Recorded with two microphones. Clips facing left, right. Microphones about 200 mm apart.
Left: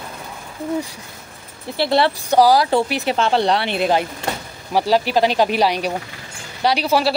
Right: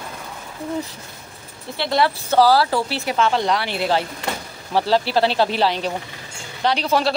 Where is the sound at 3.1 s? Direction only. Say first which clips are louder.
Left 1 dB; 30° left (ahead or behind).